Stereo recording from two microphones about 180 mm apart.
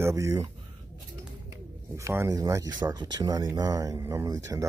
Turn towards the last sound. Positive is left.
turn(degrees=-20)  # may be behind; listen again after turning